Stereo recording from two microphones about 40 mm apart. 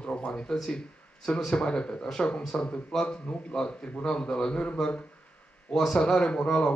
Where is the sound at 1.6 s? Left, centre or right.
Left.